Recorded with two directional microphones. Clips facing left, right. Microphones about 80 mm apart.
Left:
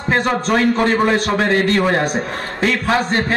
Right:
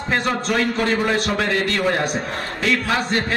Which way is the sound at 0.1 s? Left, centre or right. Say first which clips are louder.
Left 4 dB; left.